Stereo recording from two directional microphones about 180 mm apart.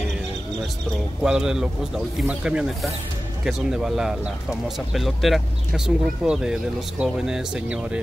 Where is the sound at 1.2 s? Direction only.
5° right (ahead or behind).